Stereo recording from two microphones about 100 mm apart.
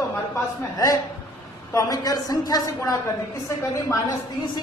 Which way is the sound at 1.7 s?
35° left (ahead or behind).